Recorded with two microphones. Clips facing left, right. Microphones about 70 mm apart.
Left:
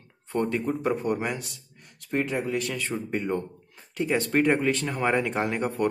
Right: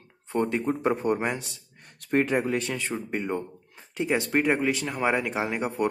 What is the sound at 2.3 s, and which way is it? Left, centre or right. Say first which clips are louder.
Speech: right 4 dB; right.